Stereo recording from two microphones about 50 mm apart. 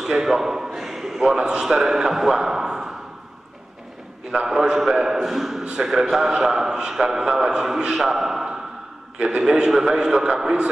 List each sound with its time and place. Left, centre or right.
0.0 s a man's voice: centre
4.5 s a man's voice: centre
9.2 s a man's voice: centre